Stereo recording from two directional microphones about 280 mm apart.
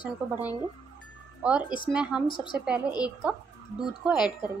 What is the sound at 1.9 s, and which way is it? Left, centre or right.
Speech, centre.